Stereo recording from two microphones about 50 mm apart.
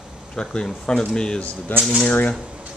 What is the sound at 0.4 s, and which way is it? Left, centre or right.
Speech, centre.